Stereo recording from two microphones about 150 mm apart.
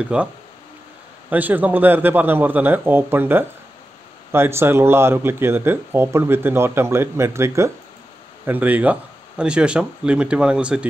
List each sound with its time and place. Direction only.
0.0 s speech: 5° right (ahead or behind)
1.3 s speech: 10° right (ahead or behind)